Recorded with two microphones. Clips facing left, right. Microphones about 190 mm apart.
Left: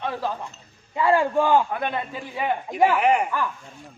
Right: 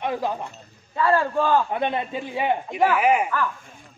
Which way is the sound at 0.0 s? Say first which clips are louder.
Right 2 dB; 15° right (ahead or behind).